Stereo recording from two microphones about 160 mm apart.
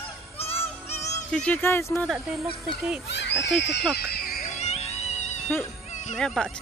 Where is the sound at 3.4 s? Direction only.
90° left.